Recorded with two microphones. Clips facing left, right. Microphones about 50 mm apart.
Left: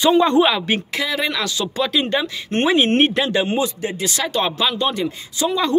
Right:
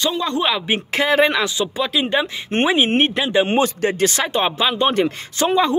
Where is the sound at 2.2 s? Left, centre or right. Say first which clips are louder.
Even; right.